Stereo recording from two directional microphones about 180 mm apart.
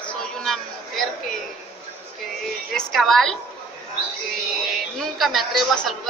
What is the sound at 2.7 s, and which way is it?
Speech, centre (ahead or behind).